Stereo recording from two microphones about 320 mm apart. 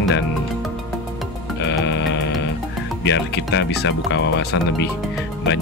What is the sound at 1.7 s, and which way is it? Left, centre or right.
Music, left.